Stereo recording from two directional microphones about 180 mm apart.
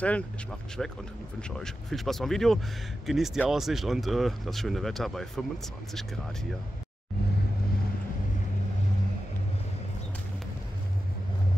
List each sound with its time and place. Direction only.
0.0 s speech: 5° left (ahead or behind)